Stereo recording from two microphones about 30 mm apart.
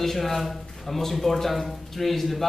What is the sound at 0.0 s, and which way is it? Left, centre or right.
A man's voice, centre.